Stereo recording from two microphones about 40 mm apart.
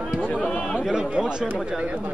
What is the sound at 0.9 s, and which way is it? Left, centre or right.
Speech, right.